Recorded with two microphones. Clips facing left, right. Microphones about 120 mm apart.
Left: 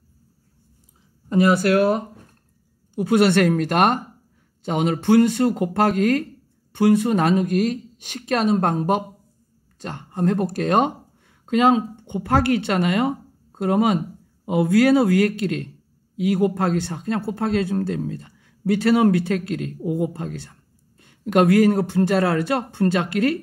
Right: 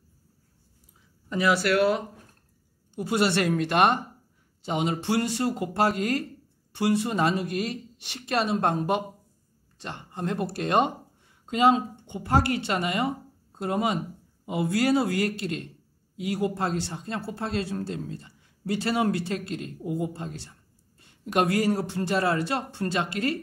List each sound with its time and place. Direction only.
1.3 s speech: 45° left (ahead or behind)